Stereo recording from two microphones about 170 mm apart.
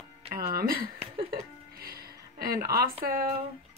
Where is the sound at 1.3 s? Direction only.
60° right (ahead or behind).